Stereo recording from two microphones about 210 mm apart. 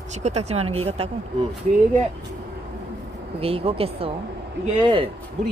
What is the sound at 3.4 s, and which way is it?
Speech, 25° right (ahead or behind).